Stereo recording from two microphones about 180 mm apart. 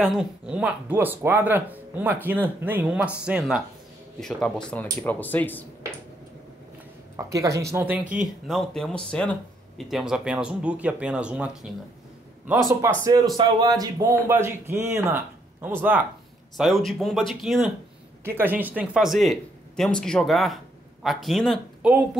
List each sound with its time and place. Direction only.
0.0 s speech: 5° right (ahead or behind)
7.2 s speech: 15° right (ahead or behind)
8.5 s speech: centre (ahead or behind)
13.0 s speech: 20° right (ahead or behind)
16.5 s speech: centre (ahead or behind)
18.2 s speech: 10° right (ahead or behind)